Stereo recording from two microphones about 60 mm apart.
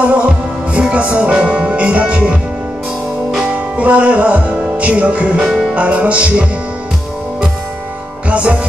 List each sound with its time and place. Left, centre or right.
0.0 s music: right
3.5 s music: right
5.4 s music: centre
5.8 s music: centre
8.3 s music: centre